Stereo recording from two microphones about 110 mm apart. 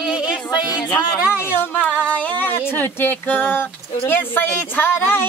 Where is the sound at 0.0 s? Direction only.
10° right (ahead or behind).